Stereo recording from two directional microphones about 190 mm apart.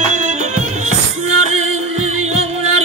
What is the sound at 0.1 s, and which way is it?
Music, 40° right (ahead or behind).